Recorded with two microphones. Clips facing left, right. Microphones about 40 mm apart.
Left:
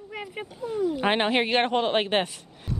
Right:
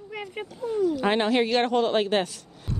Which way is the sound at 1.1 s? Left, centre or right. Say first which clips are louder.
Left 1 dB; left.